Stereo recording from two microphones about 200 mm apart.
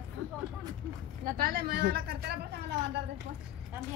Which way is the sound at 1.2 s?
45° right (ahead or behind).